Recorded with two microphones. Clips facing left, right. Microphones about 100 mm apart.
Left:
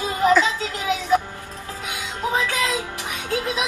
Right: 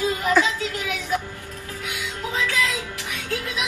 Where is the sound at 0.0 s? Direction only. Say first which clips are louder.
Left 3 dB; 25° left (ahead or behind).